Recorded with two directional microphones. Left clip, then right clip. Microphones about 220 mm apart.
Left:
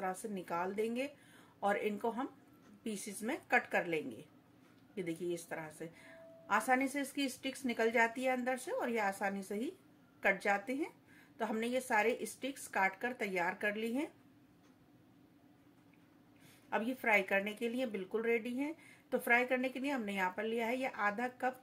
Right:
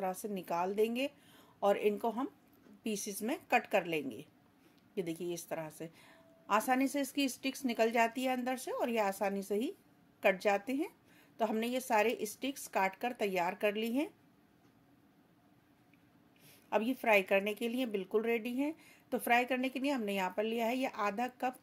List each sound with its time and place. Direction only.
0.0 s speech: 45° right (ahead or behind)
16.6 s speech: 45° right (ahead or behind)